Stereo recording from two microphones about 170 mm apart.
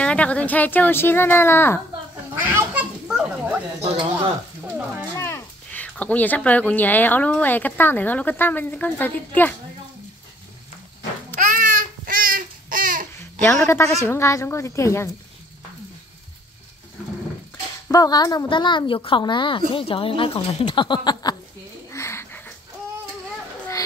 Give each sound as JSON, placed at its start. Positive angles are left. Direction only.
{"t": 0.0, "sound": "speech", "side_deg": 5}
{"t": 2.4, "sound": "children playing", "side_deg": -10}
{"t": 4.1, "sound": "speech", "side_deg": -10}
{"t": 5.1, "sound": "speech", "side_deg": 15}
{"t": 11.3, "sound": "babbling", "side_deg": -50}
{"t": 13.4, "sound": "speech", "side_deg": 15}
{"t": 17.8, "sound": "a woman's voice", "side_deg": 20}
{"t": 21.9, "sound": "a sound", "side_deg": 15}